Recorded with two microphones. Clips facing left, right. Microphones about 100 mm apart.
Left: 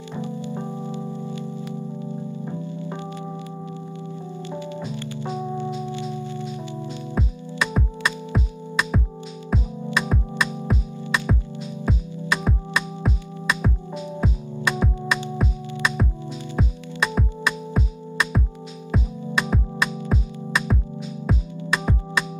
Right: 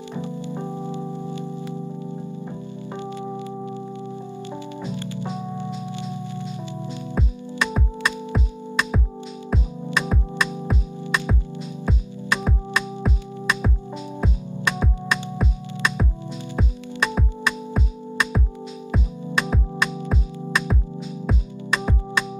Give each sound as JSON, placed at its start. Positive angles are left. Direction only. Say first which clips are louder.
{"t": 0.1, "sound": "keyboard", "louder": "left 1 dB", "side_deg": -15}
{"t": 7.2, "sound": "music", "louder": "even", "side_deg": 0}